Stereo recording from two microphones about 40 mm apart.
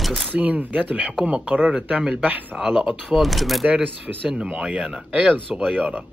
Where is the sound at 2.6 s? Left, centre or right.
Centre.